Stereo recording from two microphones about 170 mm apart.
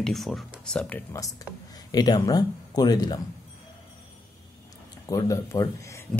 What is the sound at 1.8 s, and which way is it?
Speech, 25° left (ahead or behind).